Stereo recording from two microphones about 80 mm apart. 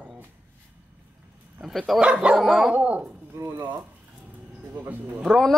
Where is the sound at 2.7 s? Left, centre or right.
Centre.